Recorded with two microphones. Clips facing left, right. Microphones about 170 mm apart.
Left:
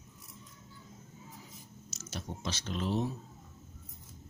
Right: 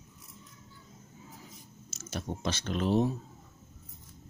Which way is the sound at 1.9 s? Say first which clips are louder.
Right 5 dB; 55° right (ahead or behind).